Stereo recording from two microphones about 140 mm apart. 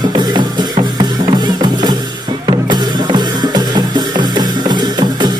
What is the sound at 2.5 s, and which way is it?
Music, 30° right (ahead or behind).